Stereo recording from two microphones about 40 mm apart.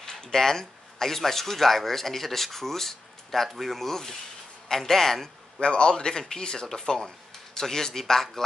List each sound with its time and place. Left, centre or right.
0.0 s a man's voice: centre
5.6 s a man's voice: left; by 8.5 s centre